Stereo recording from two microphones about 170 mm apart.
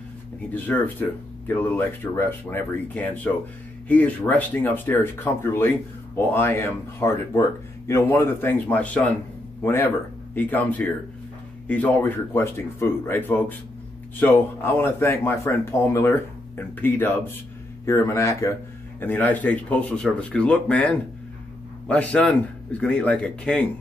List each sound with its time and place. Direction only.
0.5 s speech: 10° left (ahead or behind)